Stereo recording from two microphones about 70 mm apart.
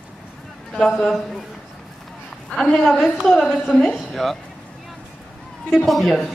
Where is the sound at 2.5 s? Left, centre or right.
Centre.